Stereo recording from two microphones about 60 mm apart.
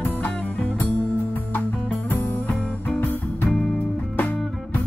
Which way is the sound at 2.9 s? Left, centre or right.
Left.